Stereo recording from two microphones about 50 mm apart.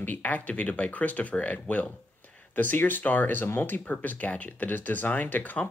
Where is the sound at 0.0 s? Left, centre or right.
Left.